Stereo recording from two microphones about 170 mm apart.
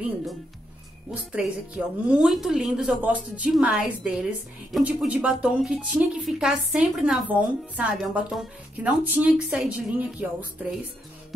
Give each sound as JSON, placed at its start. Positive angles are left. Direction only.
{"t": 1.3, "sound": "a woman's voice", "side_deg": -5}